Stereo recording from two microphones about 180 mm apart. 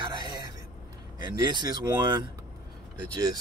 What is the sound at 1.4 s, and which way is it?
Speech, 25° right (ahead or behind).